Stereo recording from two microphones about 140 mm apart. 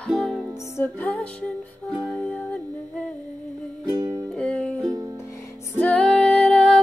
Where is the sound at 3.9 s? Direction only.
25° right (ahead or behind).